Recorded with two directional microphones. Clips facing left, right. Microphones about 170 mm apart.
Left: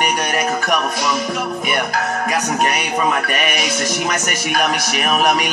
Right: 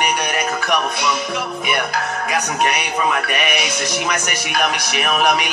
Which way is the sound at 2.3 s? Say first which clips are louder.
Even; 40° left (ahead or behind).